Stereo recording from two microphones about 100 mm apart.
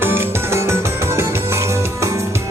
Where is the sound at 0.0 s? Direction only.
25° right (ahead or behind).